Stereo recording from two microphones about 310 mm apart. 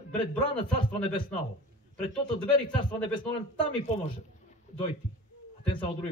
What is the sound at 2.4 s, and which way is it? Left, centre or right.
A man's voice, centre.